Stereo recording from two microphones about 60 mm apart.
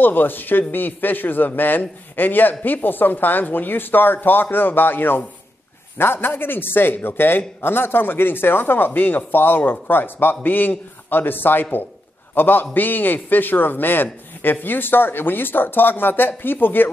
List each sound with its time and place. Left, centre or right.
0.0 s a man's voice: left